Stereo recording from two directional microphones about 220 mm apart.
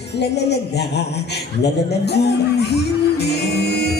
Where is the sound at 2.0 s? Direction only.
50° left (ahead or behind).